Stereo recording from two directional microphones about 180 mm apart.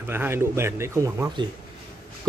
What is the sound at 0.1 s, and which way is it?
A man's voice, 10° right (ahead or behind).